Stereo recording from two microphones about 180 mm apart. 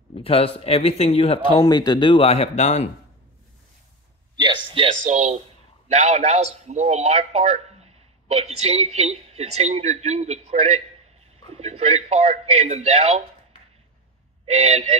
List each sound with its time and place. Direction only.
0.1 s a man's voice: 30° left (ahead or behind)
4.4 s a man's voice: 25° right (ahead or behind)
14.4 s speech: 35° right (ahead or behind)